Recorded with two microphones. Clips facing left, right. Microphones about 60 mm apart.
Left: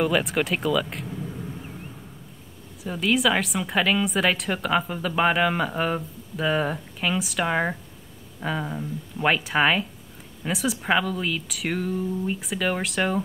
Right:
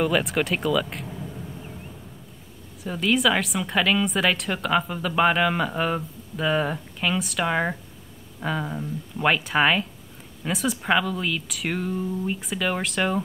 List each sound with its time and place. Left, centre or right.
0.0 s a woman's voice: centre
2.8 s a woman's voice: centre